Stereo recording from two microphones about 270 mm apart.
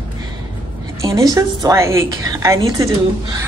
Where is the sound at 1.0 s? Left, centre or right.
Centre.